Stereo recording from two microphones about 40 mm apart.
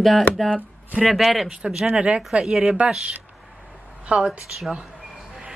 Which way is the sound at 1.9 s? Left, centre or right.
Right.